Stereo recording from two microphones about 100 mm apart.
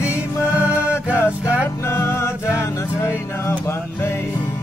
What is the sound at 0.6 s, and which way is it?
Music, 15° right (ahead or behind).